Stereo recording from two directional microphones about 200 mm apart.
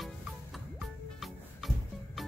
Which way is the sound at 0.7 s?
Centre (ahead or behind).